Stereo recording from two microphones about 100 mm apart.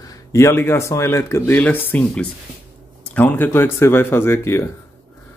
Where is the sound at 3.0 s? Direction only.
15° left (ahead or behind).